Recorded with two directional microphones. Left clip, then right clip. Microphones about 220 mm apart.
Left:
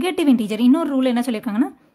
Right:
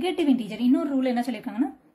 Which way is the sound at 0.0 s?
45° left (ahead or behind).